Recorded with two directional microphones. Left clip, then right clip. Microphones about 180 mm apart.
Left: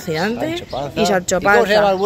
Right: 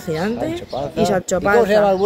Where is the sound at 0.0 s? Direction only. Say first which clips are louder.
Left 2 dB; 5° right (ahead or behind).